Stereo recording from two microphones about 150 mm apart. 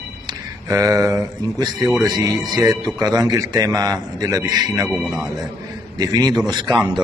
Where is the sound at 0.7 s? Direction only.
25° right (ahead or behind).